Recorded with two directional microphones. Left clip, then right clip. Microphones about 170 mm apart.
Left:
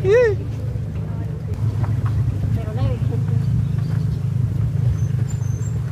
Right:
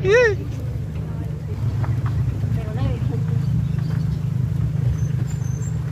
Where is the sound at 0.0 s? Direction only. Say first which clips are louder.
Even; 15° left (ahead or behind).